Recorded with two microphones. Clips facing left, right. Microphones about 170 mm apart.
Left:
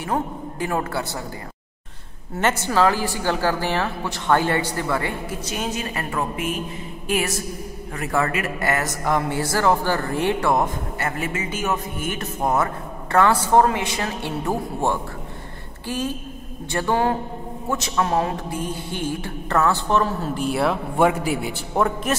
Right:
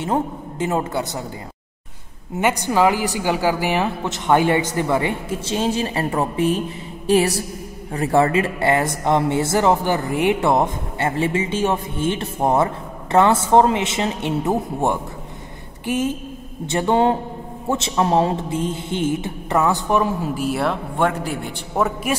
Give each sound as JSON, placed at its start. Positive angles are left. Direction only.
{"t": 0.0, "sound": "speech", "side_deg": -25}
{"t": 2.3, "sound": "a woman's voice", "side_deg": -15}
{"t": 20.4, "sound": "a man's voice", "side_deg": 0}